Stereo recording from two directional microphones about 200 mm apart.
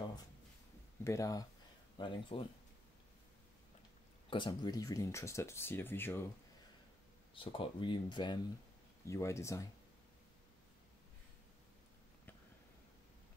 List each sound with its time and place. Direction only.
1.0 s speech: 15° left (ahead or behind)
4.3 s speech: 25° left (ahead or behind)
7.3 s speech: 25° left (ahead or behind)